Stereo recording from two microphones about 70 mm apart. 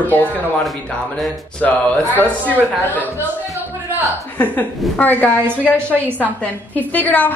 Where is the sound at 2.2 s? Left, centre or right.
Left.